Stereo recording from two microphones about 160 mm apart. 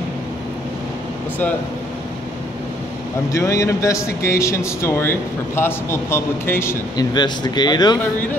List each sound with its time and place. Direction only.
3.3 s speech: 20° left (ahead or behind)
7.2 s speech: 25° left (ahead or behind)